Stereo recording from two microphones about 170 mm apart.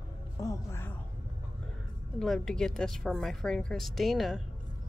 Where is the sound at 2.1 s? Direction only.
5° left (ahead or behind).